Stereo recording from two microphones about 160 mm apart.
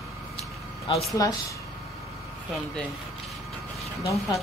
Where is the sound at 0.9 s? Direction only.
30° left (ahead or behind).